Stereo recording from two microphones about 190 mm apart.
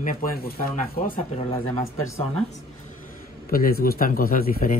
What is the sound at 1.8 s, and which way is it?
Speech, 15° left (ahead or behind).